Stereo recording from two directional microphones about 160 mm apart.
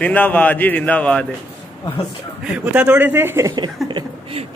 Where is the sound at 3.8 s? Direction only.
30° right (ahead or behind).